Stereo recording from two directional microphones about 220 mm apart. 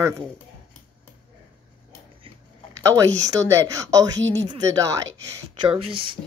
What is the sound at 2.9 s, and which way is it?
A woman's voice, 15° right (ahead or behind).